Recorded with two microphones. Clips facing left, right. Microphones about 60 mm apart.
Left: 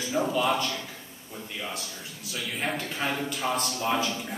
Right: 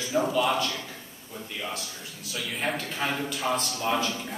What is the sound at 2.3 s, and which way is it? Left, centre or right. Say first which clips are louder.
A man's voice: right 1 dB; centre.